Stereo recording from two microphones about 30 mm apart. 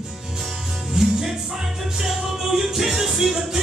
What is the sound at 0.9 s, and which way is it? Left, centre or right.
Music, centre.